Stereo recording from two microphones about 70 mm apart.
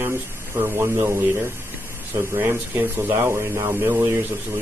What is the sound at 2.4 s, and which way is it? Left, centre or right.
Speech, right.